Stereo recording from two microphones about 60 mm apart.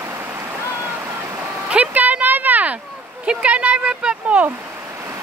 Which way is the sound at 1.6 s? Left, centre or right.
Right.